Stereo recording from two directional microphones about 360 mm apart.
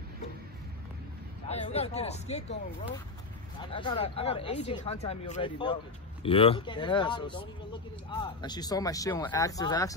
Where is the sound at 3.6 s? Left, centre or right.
Centre.